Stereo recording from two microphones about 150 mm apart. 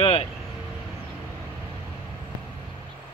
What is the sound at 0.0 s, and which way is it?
Vehicle, 40° left (ahead or behind).